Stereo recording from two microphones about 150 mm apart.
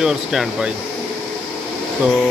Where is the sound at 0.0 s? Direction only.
5° right (ahead or behind).